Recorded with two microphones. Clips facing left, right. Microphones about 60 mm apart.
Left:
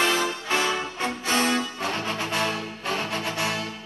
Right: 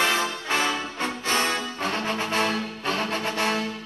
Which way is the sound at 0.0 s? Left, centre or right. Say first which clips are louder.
Even; right.